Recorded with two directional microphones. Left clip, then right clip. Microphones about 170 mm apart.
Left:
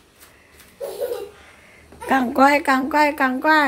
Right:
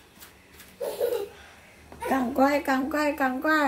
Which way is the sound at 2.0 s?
30° left (ahead or behind).